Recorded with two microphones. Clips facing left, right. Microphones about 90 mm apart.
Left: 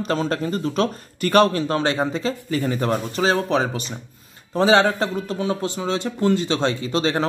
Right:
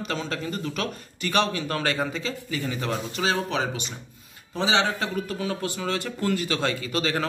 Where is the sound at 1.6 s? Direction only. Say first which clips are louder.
Left 5 dB; 25° left (ahead or behind).